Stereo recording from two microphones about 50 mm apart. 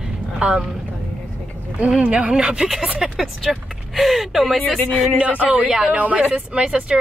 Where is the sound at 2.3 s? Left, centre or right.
Centre.